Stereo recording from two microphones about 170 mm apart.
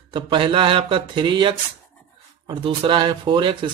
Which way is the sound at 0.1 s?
30° right (ahead or behind).